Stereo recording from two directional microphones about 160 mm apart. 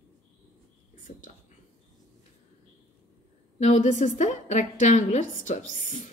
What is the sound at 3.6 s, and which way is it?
Speech, 50° left (ahead or behind).